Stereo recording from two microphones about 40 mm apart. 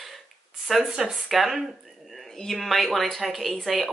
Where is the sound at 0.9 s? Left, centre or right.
Centre.